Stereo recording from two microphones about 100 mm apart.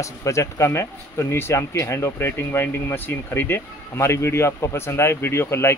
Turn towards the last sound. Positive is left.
turn(degrees=25)  # may be behind; listen again after turning